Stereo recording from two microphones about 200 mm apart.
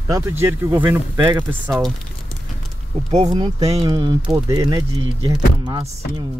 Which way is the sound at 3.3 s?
20° right (ahead or behind).